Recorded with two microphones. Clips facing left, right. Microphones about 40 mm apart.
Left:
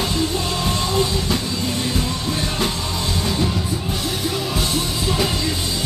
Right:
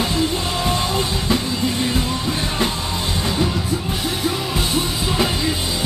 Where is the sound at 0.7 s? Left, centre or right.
Right.